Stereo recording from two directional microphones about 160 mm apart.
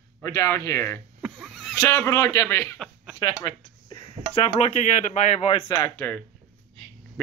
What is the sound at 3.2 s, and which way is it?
Speech, 30° left (ahead or behind).